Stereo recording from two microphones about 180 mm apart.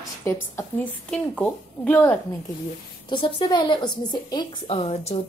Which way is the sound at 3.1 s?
25° left (ahead or behind).